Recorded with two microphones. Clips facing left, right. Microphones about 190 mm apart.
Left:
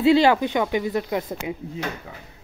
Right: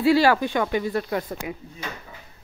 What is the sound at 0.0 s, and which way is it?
Speech, 20° left (ahead or behind).